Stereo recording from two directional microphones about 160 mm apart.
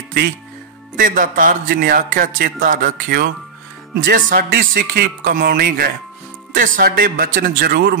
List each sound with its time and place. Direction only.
0.9 s speech: 60° right (ahead or behind)
6.5 s speech: 60° right (ahead or behind)